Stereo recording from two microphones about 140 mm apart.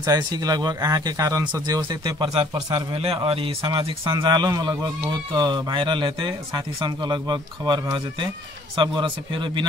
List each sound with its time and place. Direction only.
0.0 s speech: 25° right (ahead or behind); by 3.7 s 40° right (ahead or behind)
3.7 s speech: 25° right (ahead or behind)
9.0 s speech: 35° right (ahead or behind)